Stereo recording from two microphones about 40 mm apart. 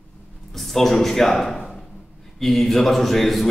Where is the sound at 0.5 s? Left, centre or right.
Centre.